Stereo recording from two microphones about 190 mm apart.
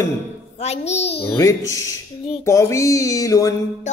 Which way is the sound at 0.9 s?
65° left (ahead or behind).